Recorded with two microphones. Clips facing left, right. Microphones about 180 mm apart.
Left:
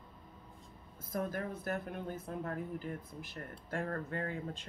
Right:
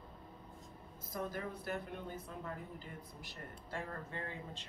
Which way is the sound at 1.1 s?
50° left (ahead or behind).